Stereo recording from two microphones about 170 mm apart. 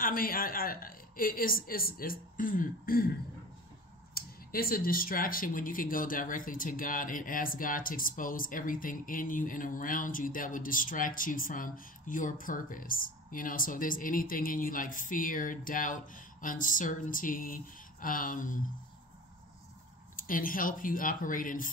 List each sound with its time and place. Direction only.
0.0 s a woman's voice: 55° left (ahead or behind)
4.1 s speech: 60° left (ahead or behind)
20.2 s speech: 55° left (ahead or behind)